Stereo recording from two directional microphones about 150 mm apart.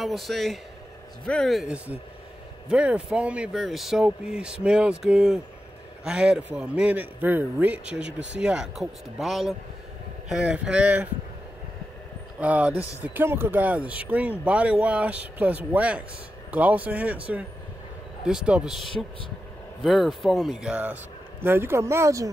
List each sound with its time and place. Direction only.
0.0 s a man's voice: centre (ahead or behind)
12.4 s speech: 10° right (ahead or behind)
18.2 s a man's voice: 5° right (ahead or behind); by 22.3 s 20° right (ahead or behind)